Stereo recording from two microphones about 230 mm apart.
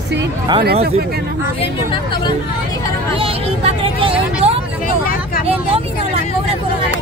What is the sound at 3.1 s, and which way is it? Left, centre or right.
Speech, right.